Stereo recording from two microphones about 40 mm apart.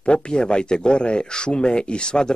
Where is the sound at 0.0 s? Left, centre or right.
Left.